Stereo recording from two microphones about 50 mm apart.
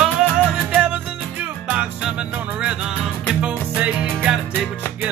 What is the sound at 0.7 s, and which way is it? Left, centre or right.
Music, right.